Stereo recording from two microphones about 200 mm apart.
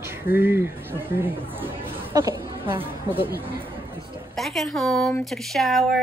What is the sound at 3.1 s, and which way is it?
Speech, 10° right (ahead or behind).